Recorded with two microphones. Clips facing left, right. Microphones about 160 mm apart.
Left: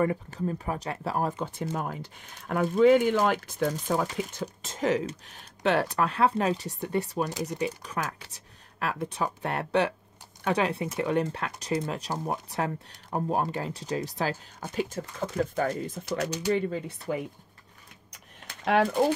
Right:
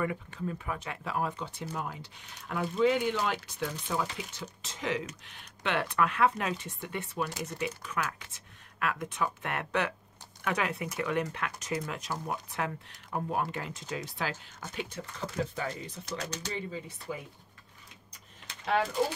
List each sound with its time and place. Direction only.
0.0 s speech: 40° left (ahead or behind)
16.4 s speech: 60° left (ahead or behind)